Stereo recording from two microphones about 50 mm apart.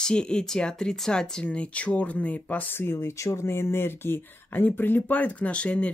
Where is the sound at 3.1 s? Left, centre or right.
Left.